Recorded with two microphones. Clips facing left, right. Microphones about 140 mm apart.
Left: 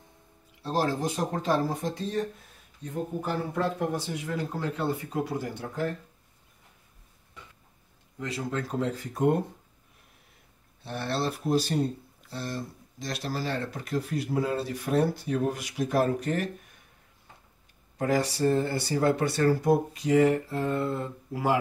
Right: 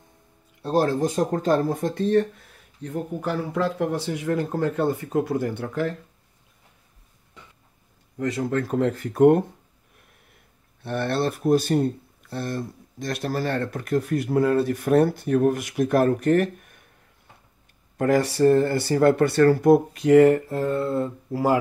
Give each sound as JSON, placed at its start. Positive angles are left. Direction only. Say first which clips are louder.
{"t": 0.6, "sound": "speech", "louder": "right 6 dB", "side_deg": -50}
{"t": 2.8, "sound": "speech", "louder": "right 4 dB", "side_deg": -80}
{"t": 8.2, "sound": "speech", "louder": "right 7 dB", "side_deg": -50}
{"t": 10.8, "sound": "speech", "louder": "right 6 dB", "side_deg": -55}
{"t": 17.9, "sound": "speech", "louder": "right 6 dB", "side_deg": -55}